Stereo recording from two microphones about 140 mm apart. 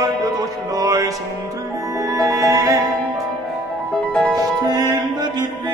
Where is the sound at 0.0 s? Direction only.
25° right (ahead or behind).